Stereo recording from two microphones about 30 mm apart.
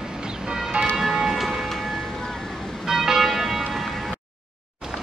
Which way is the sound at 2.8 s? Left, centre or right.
Centre.